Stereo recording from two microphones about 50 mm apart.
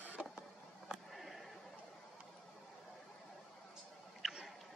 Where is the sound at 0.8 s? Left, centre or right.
Centre.